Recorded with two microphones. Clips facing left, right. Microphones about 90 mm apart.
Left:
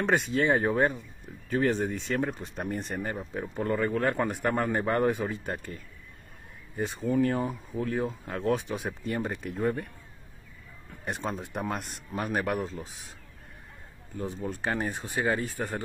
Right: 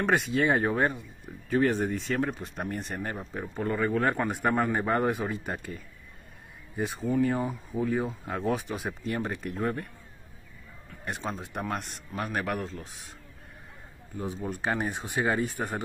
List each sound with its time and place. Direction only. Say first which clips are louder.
0.0 s speech: even; centre (ahead or behind)
6.8 s speech: even; centre (ahead or behind)
11.1 s speech: left 1 dB; centre (ahead or behind)
14.2 s speech: right 1 dB; 15° right (ahead or behind)